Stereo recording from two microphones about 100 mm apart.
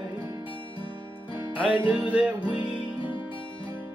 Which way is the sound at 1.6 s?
55° left (ahead or behind).